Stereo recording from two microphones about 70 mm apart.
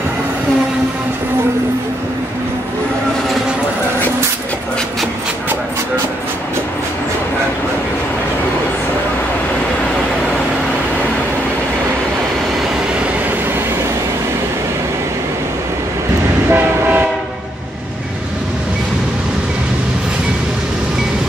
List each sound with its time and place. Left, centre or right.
16.4 s train: right